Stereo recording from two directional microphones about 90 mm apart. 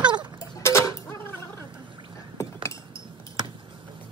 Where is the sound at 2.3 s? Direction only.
35° left (ahead or behind).